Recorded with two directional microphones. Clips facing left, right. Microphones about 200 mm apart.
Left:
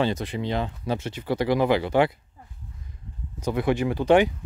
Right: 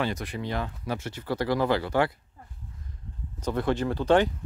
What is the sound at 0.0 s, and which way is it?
Speech, 25° left (ahead or behind).